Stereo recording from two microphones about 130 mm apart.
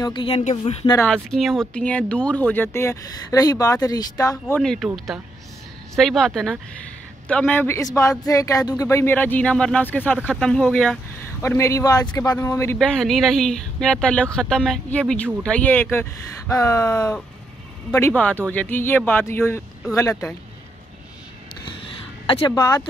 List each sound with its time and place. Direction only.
0.0 s speech: 40° left (ahead or behind)
0.4 s speech: 65° left (ahead or behind)
1.0 s speech: 5° left (ahead or behind); by 4.6 s 25° left (ahead or behind)
4.6 s speech: 5° left (ahead or behind)
10.1 s speech: 5° right (ahead or behind)
10.4 s speech: 5° left (ahead or behind)
11.4 s speech: 20° left (ahead or behind)
12.4 s speech: 20° left (ahead or behind)
12.7 s speech: 5° left (ahead or behind); by 16.8 s 25° left (ahead or behind)
16.8 s speech: 10° left (ahead or behind); by 20.2 s 25° left (ahead or behind)
22.2 s a sound: 45° left (ahead or behind)